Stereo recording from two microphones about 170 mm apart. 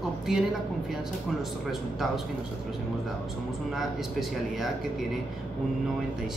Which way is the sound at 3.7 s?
Centre (ahead or behind).